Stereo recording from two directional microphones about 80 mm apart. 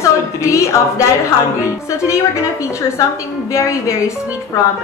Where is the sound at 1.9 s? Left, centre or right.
Left.